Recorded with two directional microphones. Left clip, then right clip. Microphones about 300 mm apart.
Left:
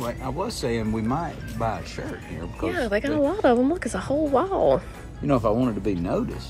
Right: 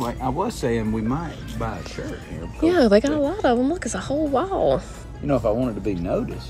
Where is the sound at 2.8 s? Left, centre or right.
Centre.